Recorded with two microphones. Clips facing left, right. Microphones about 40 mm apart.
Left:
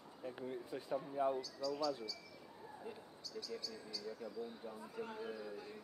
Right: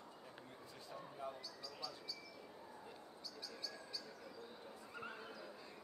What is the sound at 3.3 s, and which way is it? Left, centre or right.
Speech, centre.